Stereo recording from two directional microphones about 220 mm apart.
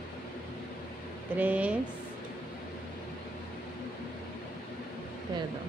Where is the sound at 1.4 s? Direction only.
5° right (ahead or behind).